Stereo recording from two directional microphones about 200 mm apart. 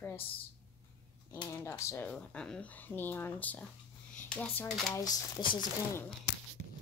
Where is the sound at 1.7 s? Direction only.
15° left (ahead or behind).